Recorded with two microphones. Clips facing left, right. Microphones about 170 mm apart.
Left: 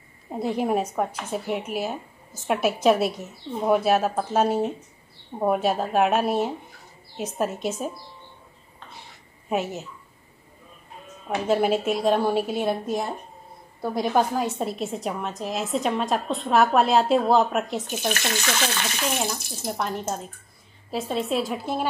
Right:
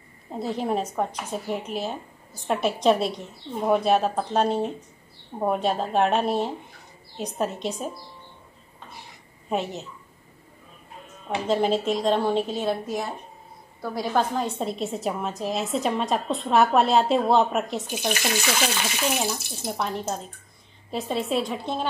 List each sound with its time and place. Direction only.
0.6 s a woman's voice: 10° left (ahead or behind)
9.5 s a woman's voice: 5° left (ahead or behind)
11.2 s speech: 5° left (ahead or behind)
13.7 s a woman's voice: 20° left (ahead or behind)
14.3 s a woman's voice: 5° left (ahead or behind)
18.0 s a woman's voice: 10° right (ahead or behind); by 21.8 s 5° left (ahead or behind)